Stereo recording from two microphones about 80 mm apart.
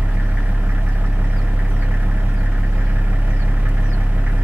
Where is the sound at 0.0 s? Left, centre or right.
Centre.